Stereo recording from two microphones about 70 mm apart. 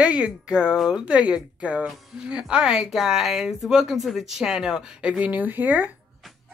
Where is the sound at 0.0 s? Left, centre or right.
Centre.